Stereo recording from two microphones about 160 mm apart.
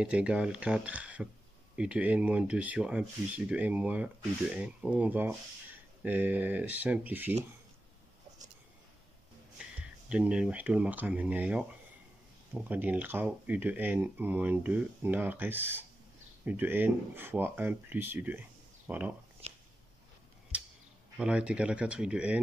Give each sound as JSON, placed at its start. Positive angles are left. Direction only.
{"t": 0.0, "sound": "speech", "side_deg": -5}
{"t": 9.6, "sound": "speech", "side_deg": -5}
{"t": 12.6, "sound": "speech", "side_deg": -10}
{"t": 19.4, "sound": "a sound", "side_deg": -40}
{"t": 21.2, "sound": "speech", "side_deg": -5}